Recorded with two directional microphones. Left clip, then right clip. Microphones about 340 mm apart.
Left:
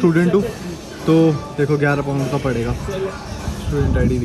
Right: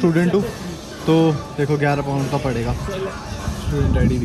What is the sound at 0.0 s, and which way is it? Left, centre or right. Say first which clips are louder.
Speech: left 2 dB; centre.